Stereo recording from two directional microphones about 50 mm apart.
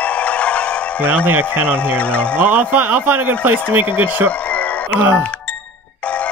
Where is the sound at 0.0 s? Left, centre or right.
Left.